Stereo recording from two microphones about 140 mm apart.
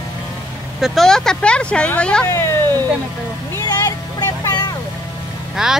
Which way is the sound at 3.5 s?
25° left (ahead or behind).